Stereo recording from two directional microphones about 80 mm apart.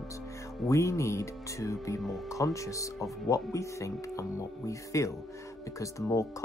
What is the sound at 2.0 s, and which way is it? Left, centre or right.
Speech, centre.